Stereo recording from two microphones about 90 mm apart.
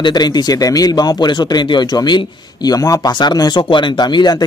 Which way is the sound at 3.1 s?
55° left (ahead or behind).